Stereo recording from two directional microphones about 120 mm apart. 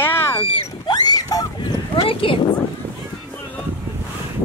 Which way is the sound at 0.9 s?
35° left (ahead or behind).